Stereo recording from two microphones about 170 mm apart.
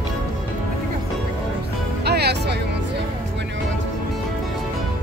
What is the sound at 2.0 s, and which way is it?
Music, 75° right (ahead or behind).